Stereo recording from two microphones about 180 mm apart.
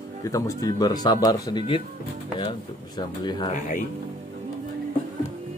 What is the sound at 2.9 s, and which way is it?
Speech, 25° left (ahead or behind).